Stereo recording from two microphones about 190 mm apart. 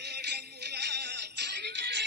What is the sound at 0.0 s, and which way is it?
Music, 60° right (ahead or behind).